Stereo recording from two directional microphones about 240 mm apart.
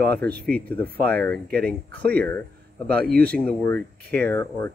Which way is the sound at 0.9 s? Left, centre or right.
Right.